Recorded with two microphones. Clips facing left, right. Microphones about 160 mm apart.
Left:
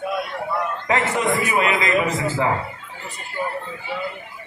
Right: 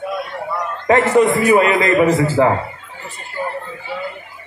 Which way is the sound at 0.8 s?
45° right (ahead or behind).